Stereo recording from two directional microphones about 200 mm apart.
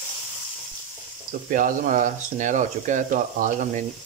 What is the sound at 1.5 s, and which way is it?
Speech, 45° right (ahead or behind).